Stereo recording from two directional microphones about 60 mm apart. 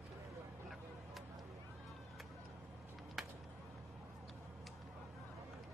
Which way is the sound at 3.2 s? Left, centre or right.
Centre.